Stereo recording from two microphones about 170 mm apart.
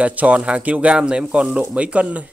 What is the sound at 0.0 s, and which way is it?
Speech, 10° right (ahead or behind).